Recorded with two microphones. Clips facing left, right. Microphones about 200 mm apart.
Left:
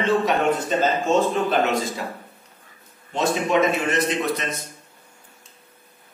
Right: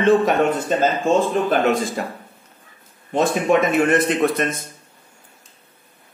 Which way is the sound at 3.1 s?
55° right (ahead or behind).